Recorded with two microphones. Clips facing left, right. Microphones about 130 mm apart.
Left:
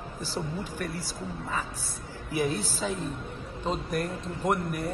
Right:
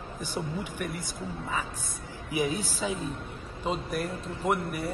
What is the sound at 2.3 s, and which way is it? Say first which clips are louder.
A man's voice: even; 15° right (ahead or behind).